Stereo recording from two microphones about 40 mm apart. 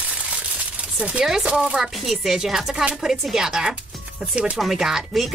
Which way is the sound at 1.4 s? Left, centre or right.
Right.